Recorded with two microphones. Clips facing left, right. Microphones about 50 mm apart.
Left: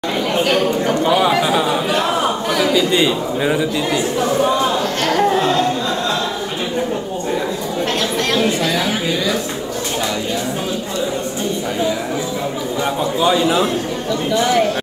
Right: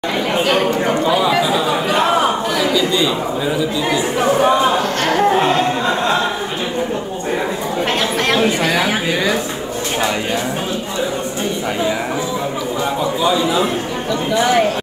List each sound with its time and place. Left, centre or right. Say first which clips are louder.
0.3 s a woman's voice: even; right
1.7 s chatter: right 2 dB; right
2.7 s a man's voice: left 2 dB; left
3.9 s chatter: right 4 dB; right
8.3 s a woman's voice: right 2 dB; right
14.3 s a woman's voice: right 1 dB; right